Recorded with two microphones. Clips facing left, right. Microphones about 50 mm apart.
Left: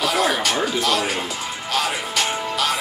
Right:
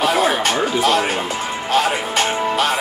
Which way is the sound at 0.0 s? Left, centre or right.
Right.